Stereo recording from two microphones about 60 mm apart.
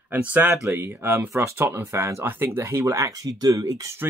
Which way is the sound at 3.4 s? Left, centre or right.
Right.